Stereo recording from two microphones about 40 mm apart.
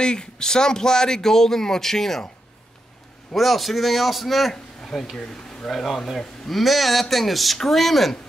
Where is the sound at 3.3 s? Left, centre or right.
Centre.